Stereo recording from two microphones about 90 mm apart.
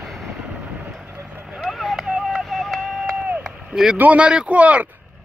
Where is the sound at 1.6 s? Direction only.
Centre (ahead or behind).